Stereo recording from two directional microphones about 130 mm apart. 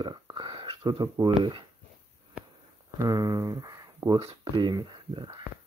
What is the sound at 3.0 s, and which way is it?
Speech, 30° right (ahead or behind).